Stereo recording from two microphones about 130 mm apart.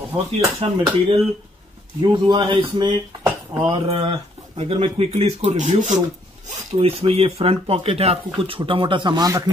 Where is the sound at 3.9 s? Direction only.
45° right (ahead or behind); by 6.0 s 65° right (ahead or behind).